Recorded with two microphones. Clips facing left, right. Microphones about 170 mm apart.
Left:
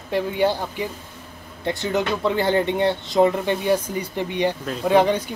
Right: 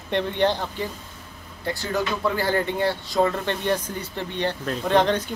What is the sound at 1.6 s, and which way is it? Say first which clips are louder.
Speech: left 3 dB; 20° left (ahead or behind).